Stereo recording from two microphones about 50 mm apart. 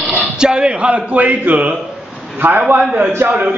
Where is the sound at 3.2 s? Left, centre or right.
Right.